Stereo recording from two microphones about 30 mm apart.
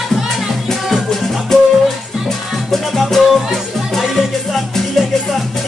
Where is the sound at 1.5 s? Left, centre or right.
Centre.